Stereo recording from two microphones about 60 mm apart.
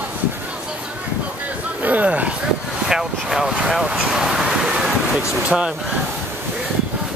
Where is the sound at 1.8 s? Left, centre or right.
Right.